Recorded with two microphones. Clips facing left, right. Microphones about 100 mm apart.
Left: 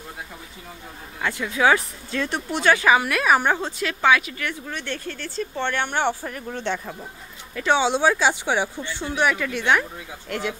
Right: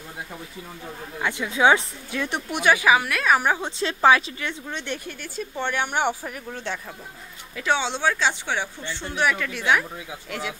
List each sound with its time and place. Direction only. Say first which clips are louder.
1.2 s speech: right 1 dB; 15° right (ahead or behind)
3.0 s a woman's voice: left 2 dB; 5° left (ahead or behind)
3.8 s speech: right 2 dB; 30° right (ahead or behind); by 9.1 s 15° left (ahead or behind)
9.1 s a woman's voice: left 2 dB; centre (ahead or behind)